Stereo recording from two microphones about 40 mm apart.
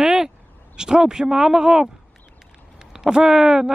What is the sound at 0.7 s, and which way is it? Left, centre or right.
A woman's voice, centre.